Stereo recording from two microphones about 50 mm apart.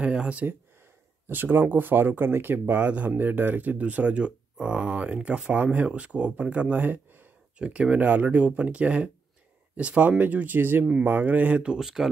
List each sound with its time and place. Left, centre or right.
0.0 s speech: right
1.2 s speech: right
7.5 s speech: right
11.8 s speech: centre